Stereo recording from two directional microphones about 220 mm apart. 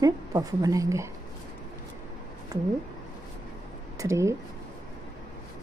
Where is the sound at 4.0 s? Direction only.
15° right (ahead or behind).